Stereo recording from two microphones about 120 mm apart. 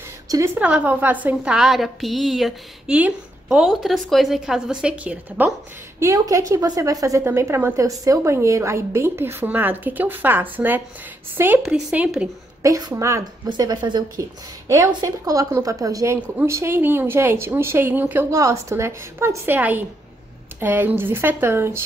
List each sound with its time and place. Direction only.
0.6 s a woman's voice: 10° right (ahead or behind)
5.9 s a woman's voice: 25° right (ahead or behind); by 12.3 s 10° right (ahead or behind)
12.6 s speech: 30° right (ahead or behind)
13.5 s speech: 35° right (ahead or behind); by 21.8 s 20° right (ahead or behind)